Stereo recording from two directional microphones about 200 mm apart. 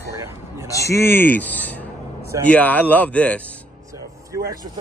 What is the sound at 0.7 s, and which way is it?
Speech, 15° left (ahead or behind).